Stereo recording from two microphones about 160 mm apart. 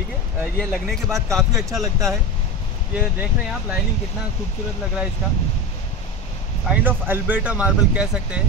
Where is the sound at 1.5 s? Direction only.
20° right (ahead or behind).